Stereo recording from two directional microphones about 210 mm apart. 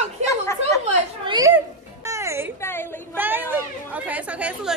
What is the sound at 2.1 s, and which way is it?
Music, 15° right (ahead or behind).